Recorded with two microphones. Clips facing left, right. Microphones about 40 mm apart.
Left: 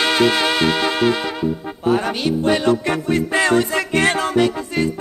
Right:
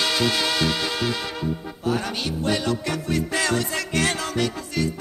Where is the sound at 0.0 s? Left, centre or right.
Left.